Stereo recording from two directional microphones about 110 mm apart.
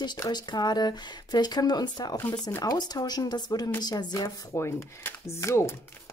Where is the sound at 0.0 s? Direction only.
40° left (ahead or behind).